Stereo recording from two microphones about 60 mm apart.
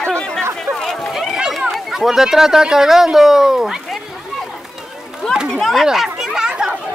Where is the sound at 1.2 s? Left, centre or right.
Centre.